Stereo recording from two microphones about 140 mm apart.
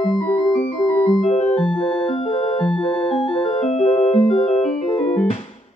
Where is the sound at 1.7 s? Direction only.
40° left (ahead or behind).